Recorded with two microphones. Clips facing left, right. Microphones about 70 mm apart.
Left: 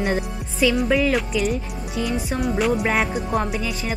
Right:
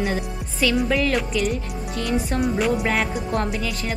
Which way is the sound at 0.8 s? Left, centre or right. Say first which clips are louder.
Left 2 dB; centre.